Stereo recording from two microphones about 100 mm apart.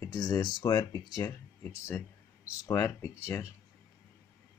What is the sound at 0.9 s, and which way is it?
Speech, 35° left (ahead or behind).